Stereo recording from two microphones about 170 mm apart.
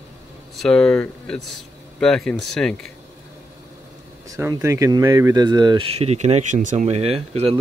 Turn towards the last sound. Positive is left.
turn(degrees=-35)  # may be behind; listen again after turning